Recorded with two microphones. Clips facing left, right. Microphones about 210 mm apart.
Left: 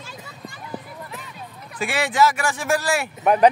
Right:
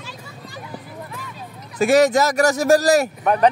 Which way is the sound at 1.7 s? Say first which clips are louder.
Right 10 dB; 40° right (ahead or behind).